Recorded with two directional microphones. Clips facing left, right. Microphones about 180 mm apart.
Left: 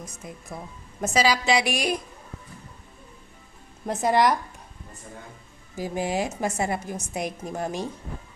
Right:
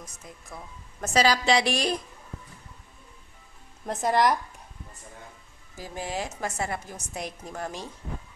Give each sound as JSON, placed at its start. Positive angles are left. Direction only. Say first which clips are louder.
{"t": 0.2, "sound": "speech", "louder": "left 5 dB", "side_deg": 25}
{"t": 1.0, "sound": "a woman's voice", "louder": "even", "side_deg": 10}
{"t": 3.8, "sound": "speech", "louder": "left 2 dB", "side_deg": 5}
{"t": 5.8, "sound": "a woman's voice", "louder": "left 6 dB", "side_deg": 15}